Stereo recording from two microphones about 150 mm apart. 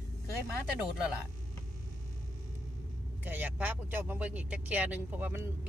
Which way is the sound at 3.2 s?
10° right (ahead or behind).